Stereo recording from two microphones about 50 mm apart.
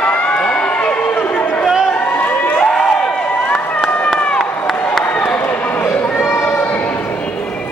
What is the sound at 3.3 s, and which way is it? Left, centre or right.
Run, left.